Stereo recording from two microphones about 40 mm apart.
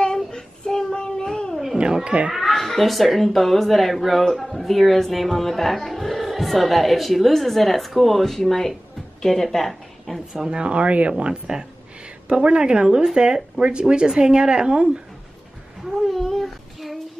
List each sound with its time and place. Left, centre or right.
0.3 s child singing: centre
2.0 s speech: right
2.5 s a woman's voice: centre
10.3 s speech: centre
16.3 s child singing: centre